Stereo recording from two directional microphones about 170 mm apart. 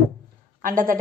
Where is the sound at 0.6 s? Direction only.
55° right (ahead or behind).